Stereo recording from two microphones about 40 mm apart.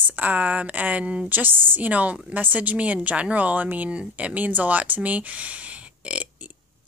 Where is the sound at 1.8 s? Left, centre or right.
Right.